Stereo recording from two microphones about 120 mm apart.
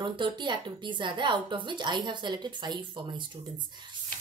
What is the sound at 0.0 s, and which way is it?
A woman's voice, 40° right (ahead or behind).